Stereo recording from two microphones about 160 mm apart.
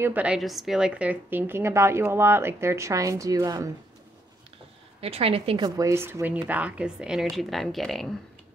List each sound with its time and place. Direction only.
0.0 s a woman's voice: 10° right (ahead or behind)
5.0 s a woman's voice: 40° right (ahead or behind)
5.8 s a woman's voice: 15° right (ahead or behind); by 8.1 s centre (ahead or behind)